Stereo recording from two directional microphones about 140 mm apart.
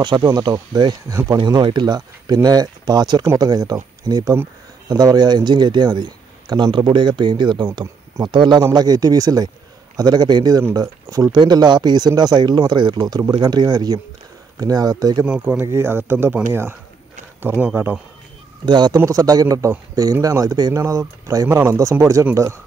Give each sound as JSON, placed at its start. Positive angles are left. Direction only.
{"t": 0.0, "sound": "a man's voice", "side_deg": -30}
{"t": 15.2, "sound": "speech", "side_deg": -10}
{"t": 18.7, "sound": "a man's voice", "side_deg": -30}